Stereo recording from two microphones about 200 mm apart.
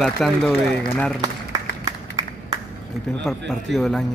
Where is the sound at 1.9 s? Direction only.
15° right (ahead or behind).